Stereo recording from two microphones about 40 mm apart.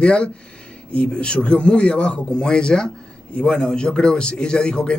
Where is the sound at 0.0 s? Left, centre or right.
Left.